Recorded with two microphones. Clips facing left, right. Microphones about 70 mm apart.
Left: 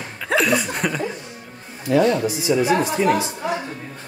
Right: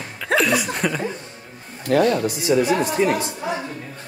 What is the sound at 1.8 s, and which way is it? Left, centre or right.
Speech, right.